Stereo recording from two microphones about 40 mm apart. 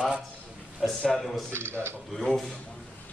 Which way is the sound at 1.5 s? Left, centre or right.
Right.